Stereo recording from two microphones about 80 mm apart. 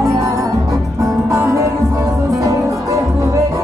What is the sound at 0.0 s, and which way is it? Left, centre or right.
Music, right.